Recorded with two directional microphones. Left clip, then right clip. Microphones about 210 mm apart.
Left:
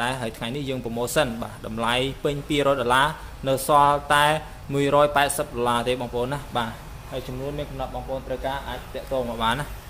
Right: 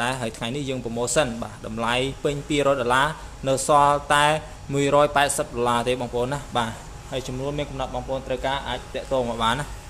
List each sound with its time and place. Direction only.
0.0 s speech: 10° right (ahead or behind)
7.1 s speech: 25° right (ahead or behind)
9.4 s speech: 10° right (ahead or behind)